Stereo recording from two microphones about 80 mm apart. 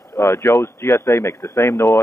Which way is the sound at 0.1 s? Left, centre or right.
Left.